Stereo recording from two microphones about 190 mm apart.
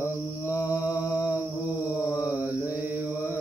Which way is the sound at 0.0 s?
15° left (ahead or behind).